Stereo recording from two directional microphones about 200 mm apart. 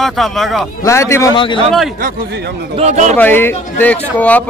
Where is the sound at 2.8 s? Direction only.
35° right (ahead or behind).